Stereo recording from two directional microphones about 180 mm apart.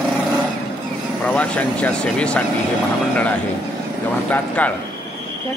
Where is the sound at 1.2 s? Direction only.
5° left (ahead or behind).